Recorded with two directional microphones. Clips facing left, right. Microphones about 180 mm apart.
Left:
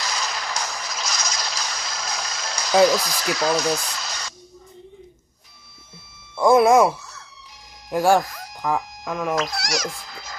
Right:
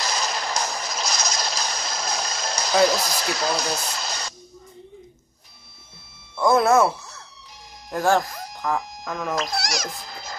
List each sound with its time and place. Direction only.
0.0 s music: 35° right (ahead or behind)
3.0 s speech: 35° right (ahead or behind)
6.3 s speech: 10° left (ahead or behind)
7.9 s speech: 10° left (ahead or behind)
9.5 s a child's voice: 40° right (ahead or behind)